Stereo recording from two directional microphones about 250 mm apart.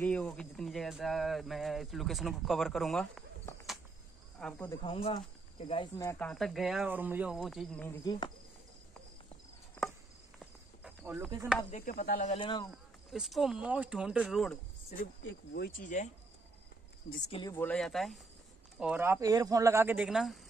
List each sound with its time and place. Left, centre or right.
0.0 s speech: centre
4.4 s speech: centre
4.8 s speech: left
10.4 s a sound: centre
11.3 s speech: centre
11.7 s speech: left; by 12.6 s centre
12.7 s speech: centre
15.2 s speech: left
15.8 s speech: left
17.3 s speech: centre